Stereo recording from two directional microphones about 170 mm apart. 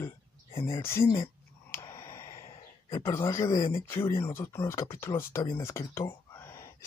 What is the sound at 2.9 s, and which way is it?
Speech, 15° left (ahead or behind).